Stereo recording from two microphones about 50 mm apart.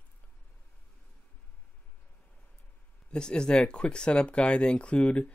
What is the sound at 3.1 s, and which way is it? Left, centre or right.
Speech, centre.